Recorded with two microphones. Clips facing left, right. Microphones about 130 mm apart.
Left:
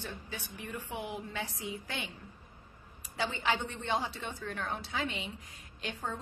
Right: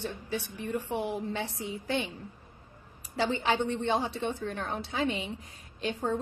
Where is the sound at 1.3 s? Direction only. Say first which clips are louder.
Right 4 dB; 25° right (ahead or behind).